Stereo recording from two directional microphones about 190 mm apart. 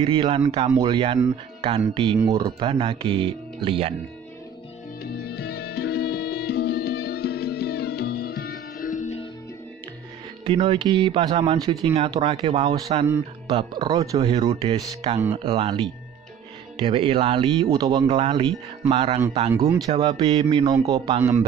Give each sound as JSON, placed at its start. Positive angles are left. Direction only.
{"t": 0.0, "sound": "speech", "side_deg": -25}
{"t": 5.0, "sound": "music", "side_deg": 55}
{"t": 10.4, "sound": "speech", "side_deg": -30}
{"t": 11.8, "sound": "a man's voice", "side_deg": -30}
{"t": 18.0, "sound": "a man's voice", "side_deg": -30}
{"t": 19.5, "sound": "speech", "side_deg": -15}
{"t": 19.9, "sound": "a man's voice", "side_deg": -30}